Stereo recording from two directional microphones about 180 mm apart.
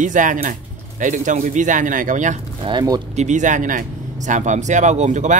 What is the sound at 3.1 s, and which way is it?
Speech, 40° right (ahead or behind).